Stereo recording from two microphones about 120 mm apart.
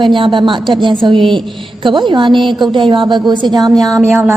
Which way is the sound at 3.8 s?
25° right (ahead or behind).